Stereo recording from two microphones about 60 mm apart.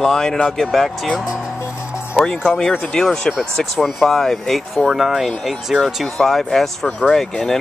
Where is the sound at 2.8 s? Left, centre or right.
Centre.